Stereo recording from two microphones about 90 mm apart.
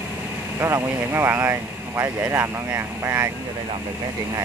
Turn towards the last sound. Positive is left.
turn(degrees=-30)  # may be behind; listen again after turning